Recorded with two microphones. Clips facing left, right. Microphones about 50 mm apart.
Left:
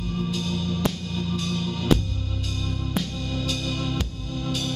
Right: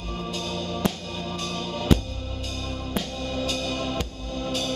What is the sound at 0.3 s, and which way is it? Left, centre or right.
Music, centre.